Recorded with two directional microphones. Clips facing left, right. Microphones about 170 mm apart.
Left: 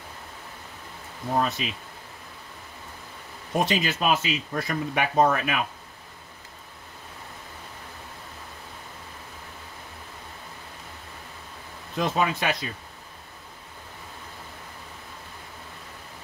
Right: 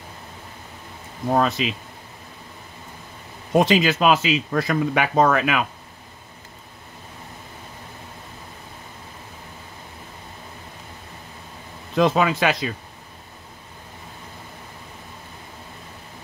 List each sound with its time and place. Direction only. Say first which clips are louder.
1.3 s speech: right 5 dB; 90° right
3.5 s speech: right 7 dB; 90° right
12.0 s speech: right 7 dB; 90° right